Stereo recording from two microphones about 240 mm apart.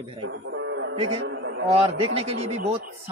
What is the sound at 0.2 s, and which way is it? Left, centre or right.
Music, right.